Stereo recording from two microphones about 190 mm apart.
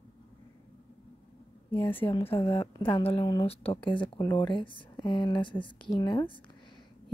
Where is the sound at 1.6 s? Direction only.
10° left (ahead or behind).